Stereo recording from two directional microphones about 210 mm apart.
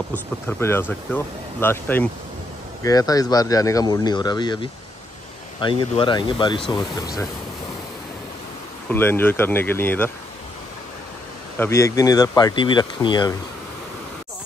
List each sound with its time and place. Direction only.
0.1 s speech: 10° left (ahead or behind)
8.8 s speech: 10° left (ahead or behind)
11.5 s speech: 10° left (ahead or behind)